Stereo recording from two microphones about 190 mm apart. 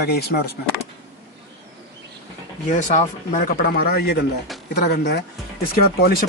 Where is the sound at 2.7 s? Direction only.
40° left (ahead or behind).